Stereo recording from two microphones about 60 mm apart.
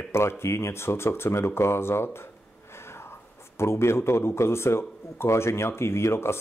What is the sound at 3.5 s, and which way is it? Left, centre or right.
Speech, left.